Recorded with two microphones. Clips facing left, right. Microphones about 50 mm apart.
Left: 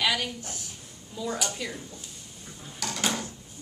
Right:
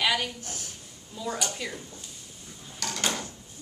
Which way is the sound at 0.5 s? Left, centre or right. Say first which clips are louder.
Even; right.